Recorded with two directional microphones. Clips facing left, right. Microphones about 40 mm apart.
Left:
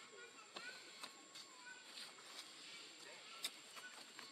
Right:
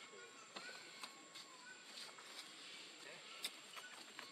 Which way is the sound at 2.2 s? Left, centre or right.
Centre.